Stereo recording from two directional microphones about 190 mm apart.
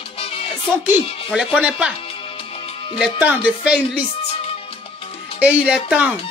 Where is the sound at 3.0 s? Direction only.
5° right (ahead or behind).